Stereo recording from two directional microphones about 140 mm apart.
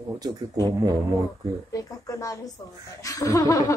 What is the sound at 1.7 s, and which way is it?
Speech, 25° left (ahead or behind).